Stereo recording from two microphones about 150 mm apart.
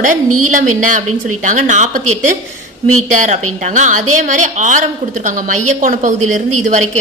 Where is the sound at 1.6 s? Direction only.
60° right (ahead or behind).